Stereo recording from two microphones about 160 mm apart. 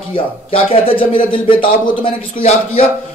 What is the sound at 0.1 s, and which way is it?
A man's voice, 35° left (ahead or behind).